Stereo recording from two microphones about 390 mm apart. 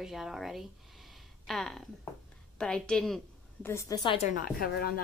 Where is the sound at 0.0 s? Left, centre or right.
Centre.